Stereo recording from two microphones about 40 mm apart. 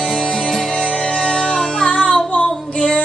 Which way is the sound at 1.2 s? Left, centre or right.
Centre.